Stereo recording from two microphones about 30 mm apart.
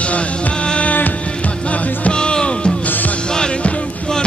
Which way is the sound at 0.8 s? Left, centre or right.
Left.